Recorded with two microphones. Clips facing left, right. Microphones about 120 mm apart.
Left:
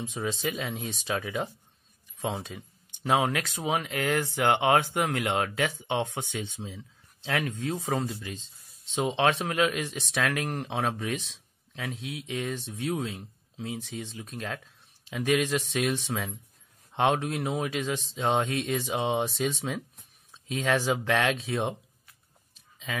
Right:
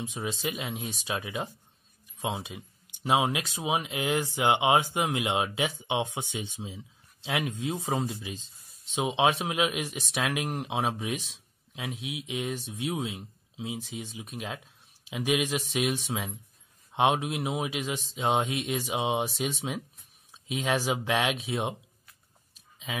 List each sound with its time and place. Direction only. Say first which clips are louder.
0.0 s speech: left 2 dB; 5° right (ahead or behind)